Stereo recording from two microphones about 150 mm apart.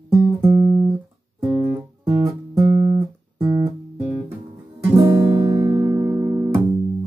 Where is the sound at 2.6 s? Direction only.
35° right (ahead or behind).